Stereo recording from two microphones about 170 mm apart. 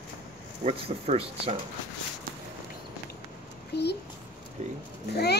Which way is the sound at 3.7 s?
75° left (ahead or behind).